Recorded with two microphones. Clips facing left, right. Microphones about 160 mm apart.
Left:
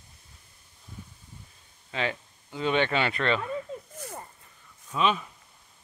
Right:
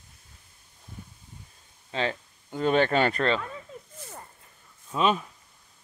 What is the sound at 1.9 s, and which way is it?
Speech, 35° right (ahead or behind).